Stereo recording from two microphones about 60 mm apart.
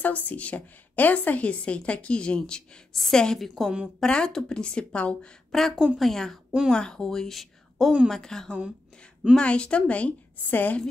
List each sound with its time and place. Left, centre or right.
0.0 s a woman's voice: left; by 3.7 s centre
4.0 s a woman's voice: centre
5.5 s a woman's voice: centre; by 10.8 s left